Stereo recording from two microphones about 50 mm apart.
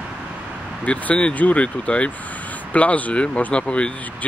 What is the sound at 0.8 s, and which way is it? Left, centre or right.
Speech, left.